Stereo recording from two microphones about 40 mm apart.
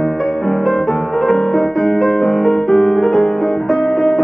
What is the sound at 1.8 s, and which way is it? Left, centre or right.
Music, centre.